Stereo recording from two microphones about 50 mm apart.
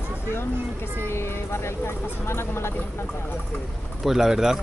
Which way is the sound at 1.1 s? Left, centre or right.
Left.